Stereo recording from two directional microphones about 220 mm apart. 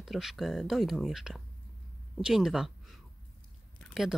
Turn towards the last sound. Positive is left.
turn(degrees=0)  # may be behind; listen again after turning